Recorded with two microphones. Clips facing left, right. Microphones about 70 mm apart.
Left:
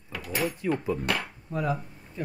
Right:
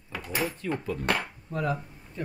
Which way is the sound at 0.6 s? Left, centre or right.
Centre.